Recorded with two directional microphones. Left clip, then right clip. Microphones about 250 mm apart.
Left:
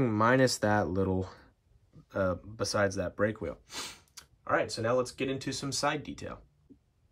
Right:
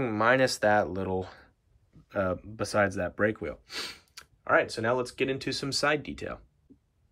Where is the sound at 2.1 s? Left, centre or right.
Centre.